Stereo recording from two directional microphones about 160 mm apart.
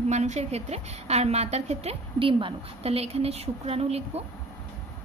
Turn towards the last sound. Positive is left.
turn(degrees=-40)  # may be behind; listen again after turning